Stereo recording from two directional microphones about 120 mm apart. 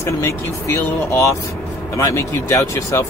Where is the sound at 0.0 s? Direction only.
20° left (ahead or behind).